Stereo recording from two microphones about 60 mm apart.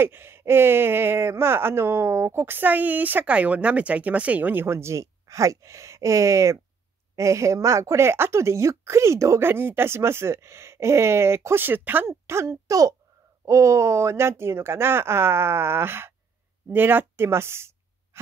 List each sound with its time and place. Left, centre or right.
0.0 s speech: right
4.6 s speech: right
9.4 s speech: right
12.1 s speech: right
13.5 s speech: right